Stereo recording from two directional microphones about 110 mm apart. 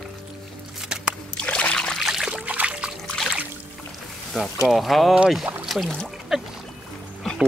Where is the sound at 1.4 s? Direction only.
10° left (ahead or behind); by 2.9 s 10° right (ahead or behind).